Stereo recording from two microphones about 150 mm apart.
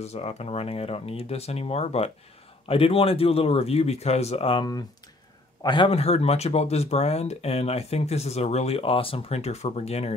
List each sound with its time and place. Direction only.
0.0 s speech: 45° left (ahead or behind)